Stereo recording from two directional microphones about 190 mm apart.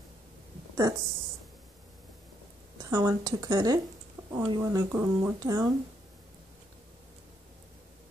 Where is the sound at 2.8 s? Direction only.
15° right (ahead or behind).